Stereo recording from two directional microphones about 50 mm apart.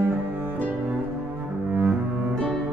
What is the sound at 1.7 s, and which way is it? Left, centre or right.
Cello, right.